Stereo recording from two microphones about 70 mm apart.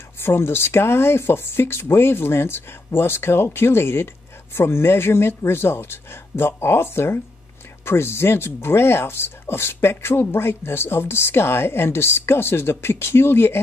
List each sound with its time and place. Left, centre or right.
0.2 s speech: left